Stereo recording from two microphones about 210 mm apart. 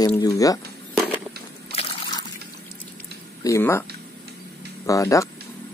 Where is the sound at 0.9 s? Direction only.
Centre (ahead or behind).